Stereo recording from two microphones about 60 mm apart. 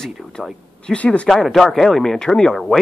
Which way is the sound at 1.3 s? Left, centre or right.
Centre.